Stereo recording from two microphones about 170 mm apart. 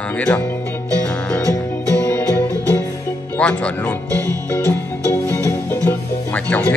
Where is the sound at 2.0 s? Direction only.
15° left (ahead or behind).